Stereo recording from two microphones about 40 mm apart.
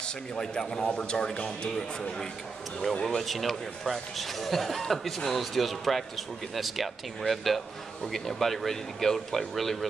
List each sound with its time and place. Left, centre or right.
0.0 s a man's voice: centre
1.8 s speech: centre